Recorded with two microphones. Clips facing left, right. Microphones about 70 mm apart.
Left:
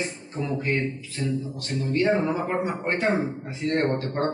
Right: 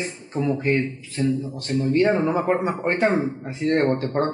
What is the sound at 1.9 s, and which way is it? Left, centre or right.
A man's voice, right.